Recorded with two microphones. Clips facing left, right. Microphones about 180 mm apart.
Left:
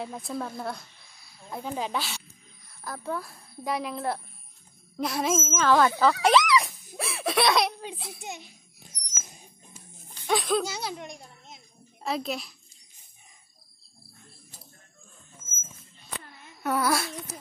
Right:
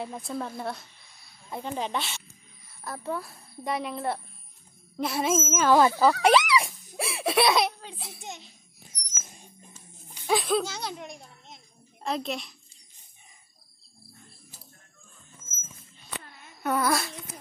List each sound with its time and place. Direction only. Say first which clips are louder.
0.0 s a woman's voice: even; centre (ahead or behind)
5.6 s speech: right 1 dB; 15° right (ahead or behind)
6.6 s snicker: right 1 dB; 30° right (ahead or behind)
7.3 s a woman's voice: right 1 dB; 5° right (ahead or behind)
10.1 s laughter: right 1 dB; centre (ahead or behind)
10.6 s a child's voice: left 1 dB; 5° left (ahead or behind)
16.6 s a sound: even; 5° left (ahead or behind)